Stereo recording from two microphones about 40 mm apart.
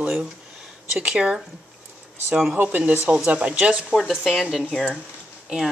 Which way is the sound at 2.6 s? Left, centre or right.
Right.